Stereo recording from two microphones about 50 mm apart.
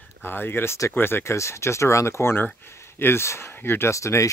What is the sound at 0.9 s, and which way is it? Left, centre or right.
Speech, left.